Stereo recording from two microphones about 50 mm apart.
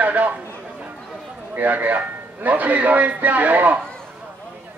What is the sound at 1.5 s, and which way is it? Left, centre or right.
A man's voice, right.